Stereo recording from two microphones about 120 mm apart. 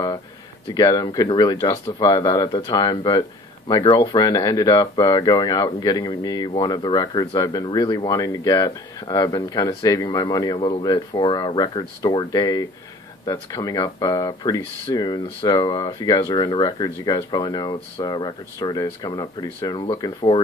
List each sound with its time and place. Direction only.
0.7 s speech: 35° left (ahead or behind)